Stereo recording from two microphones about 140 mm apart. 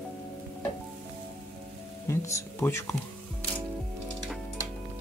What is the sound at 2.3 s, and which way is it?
Speech, 20° left (ahead or behind).